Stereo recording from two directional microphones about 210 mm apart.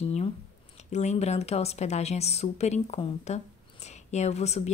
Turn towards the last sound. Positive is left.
turn(degrees=30)  # may be behind; listen again after turning